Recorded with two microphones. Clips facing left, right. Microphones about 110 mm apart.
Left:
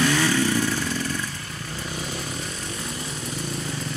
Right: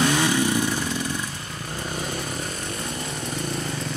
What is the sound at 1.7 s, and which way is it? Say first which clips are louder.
Chainsaw: right 3 dB; 45° right (ahead or behind).